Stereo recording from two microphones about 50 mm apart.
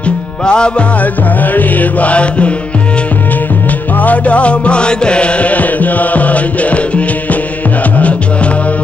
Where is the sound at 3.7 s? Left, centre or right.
Left.